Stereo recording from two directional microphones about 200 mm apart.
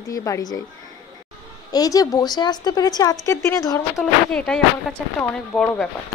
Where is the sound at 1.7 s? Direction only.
20° left (ahead or behind).